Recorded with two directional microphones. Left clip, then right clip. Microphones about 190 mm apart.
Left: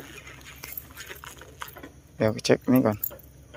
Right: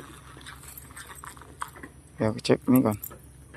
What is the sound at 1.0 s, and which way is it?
Clip-clop, 30° left (ahead or behind).